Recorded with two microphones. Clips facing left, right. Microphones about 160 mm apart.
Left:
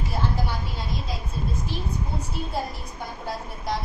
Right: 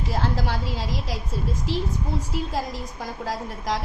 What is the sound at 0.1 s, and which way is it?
A woman's voice, 90° right.